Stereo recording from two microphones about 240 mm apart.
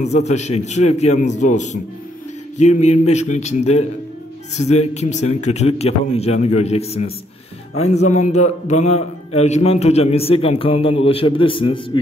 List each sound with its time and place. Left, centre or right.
0.0 s a man's voice: left